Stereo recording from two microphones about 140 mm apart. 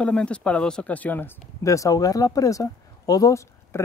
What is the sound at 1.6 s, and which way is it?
Speech, 25° left (ahead or behind).